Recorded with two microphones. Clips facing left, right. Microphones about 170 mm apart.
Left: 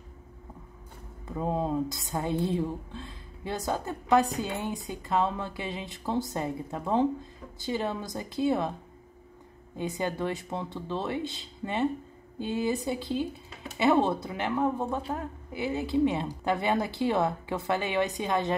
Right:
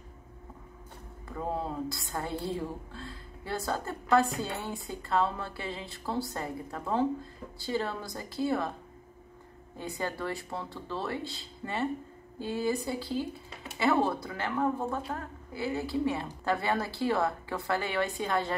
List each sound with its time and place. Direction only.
1.2 s a woman's voice: 20° left (ahead or behind)
9.8 s a woman's voice: 20° left (ahead or behind)